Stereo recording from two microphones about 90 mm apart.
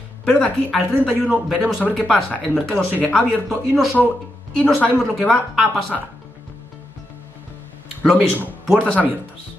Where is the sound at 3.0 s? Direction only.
15° left (ahead or behind).